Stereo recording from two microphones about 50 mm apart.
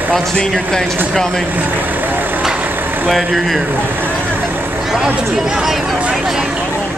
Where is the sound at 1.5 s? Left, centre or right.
Right.